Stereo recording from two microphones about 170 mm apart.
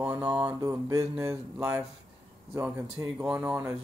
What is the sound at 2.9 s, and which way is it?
Speech, 5° right (ahead or behind).